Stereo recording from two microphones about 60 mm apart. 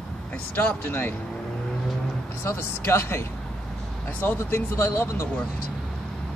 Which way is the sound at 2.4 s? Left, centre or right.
Left.